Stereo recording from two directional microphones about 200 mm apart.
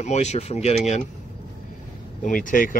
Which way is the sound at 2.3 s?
45° left (ahead or behind).